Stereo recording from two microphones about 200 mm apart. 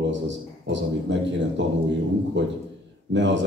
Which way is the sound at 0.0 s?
65° right (ahead or behind).